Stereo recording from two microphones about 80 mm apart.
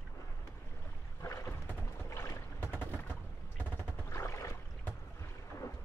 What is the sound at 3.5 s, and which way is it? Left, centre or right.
Machine gun, left.